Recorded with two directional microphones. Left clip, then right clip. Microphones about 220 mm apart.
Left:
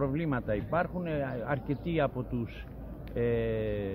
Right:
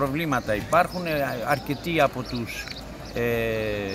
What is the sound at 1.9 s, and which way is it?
Speech, 50° left (ahead or behind).